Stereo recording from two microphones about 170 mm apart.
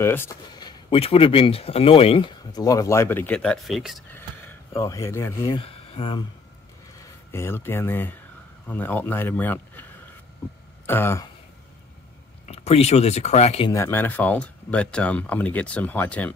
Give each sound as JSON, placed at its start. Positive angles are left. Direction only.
{"t": 0.0, "sound": "speech", "side_deg": 15}
{"t": 0.6, "sound": "speech", "side_deg": 25}
{"t": 4.1, "sound": "a sound", "side_deg": 10}
{"t": 5.4, "sound": "speech", "side_deg": 30}
{"t": 7.0, "sound": "speech", "side_deg": 15}
{"t": 10.9, "sound": "speech", "side_deg": 15}
{"t": 12.4, "sound": "speech", "side_deg": 35}
{"t": 13.7, "sound": "speech", "side_deg": 15}